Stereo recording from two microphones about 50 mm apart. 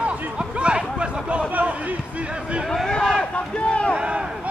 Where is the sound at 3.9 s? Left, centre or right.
Centre.